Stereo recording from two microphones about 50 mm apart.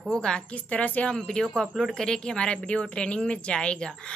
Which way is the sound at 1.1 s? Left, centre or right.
Centre.